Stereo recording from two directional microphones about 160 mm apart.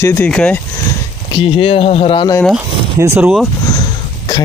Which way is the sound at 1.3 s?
35° left (ahead or behind).